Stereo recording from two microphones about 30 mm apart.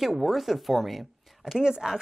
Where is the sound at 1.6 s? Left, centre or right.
Right.